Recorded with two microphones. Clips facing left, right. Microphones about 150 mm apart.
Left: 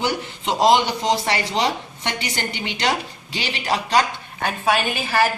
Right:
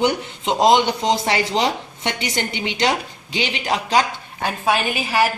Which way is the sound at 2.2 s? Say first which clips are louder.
Right 3 dB; 20° right (ahead or behind).